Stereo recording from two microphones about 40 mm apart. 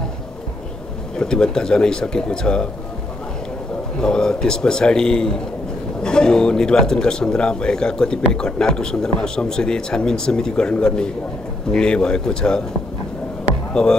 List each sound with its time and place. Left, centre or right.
1.1 s speech: centre
4.0 s a man's voice: centre
13.8 s a man's voice: centre